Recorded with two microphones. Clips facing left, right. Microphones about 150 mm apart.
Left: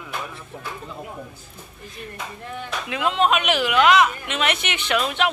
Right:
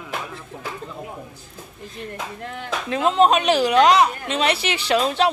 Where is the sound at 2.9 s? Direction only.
40° right (ahead or behind).